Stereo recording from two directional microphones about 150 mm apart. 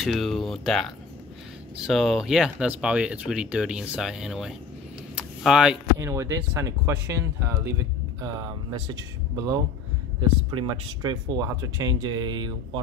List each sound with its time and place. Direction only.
0.0 s speech: centre (ahead or behind)
5.1 s a sound: 5° right (ahead or behind)
5.9 s speech: 20° right (ahead or behind)